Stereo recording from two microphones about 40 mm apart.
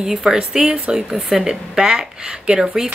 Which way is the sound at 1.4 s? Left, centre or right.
Centre.